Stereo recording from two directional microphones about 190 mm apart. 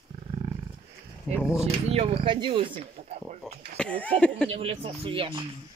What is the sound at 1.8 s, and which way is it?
Speech, 30° right (ahead or behind).